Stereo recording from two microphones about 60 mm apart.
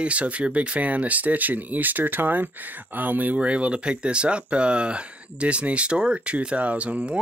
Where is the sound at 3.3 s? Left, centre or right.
Centre.